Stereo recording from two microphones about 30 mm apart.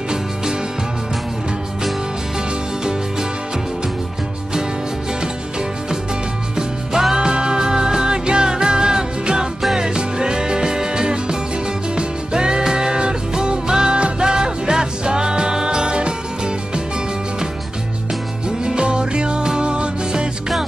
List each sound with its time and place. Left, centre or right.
6.5 s music: centre
7.2 s music: right
18.7 s music: right